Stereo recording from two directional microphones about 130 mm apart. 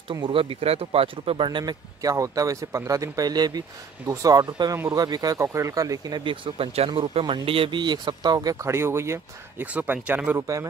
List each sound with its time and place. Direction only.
0.1 s speech: 40° right (ahead or behind); by 10.7 s 20° right (ahead or behind)